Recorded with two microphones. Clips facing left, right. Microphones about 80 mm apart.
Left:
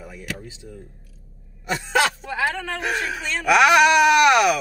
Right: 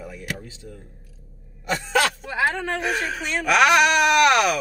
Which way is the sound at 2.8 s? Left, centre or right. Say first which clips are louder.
Left 3 dB; centre.